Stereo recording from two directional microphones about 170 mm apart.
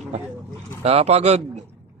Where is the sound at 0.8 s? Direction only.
40° right (ahead or behind).